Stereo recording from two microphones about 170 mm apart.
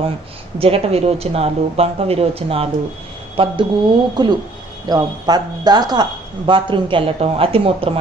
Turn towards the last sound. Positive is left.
turn(degrees=-35)  # may be behind; listen again after turning